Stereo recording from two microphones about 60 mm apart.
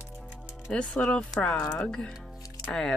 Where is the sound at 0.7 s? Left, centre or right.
Centre.